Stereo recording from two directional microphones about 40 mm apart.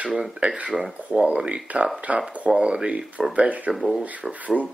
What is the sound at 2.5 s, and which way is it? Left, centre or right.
Speech, centre.